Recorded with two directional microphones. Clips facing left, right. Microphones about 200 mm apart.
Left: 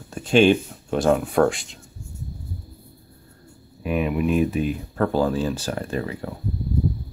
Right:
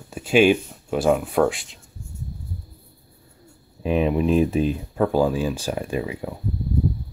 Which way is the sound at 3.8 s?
30° right (ahead or behind).